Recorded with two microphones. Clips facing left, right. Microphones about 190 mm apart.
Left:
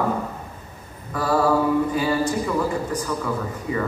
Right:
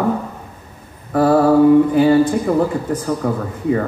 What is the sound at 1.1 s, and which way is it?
Speech, 50° right (ahead or behind).